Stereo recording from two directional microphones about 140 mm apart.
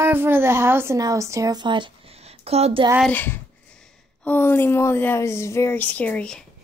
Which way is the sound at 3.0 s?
15° left (ahead or behind).